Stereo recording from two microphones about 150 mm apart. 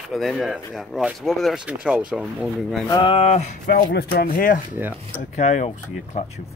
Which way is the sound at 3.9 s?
90° left.